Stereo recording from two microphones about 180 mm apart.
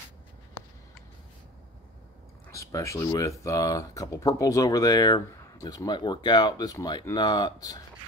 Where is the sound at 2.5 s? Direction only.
15° left (ahead or behind).